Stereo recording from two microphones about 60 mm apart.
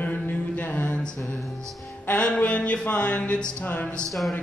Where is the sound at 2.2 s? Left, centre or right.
Left.